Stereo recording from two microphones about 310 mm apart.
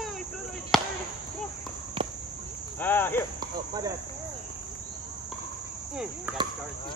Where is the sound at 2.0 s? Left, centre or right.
Centre.